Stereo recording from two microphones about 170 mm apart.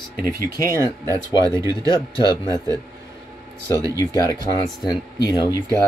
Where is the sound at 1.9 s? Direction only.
25° left (ahead or behind).